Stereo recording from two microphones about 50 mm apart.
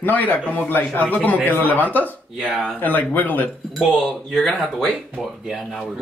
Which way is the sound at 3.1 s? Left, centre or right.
Left.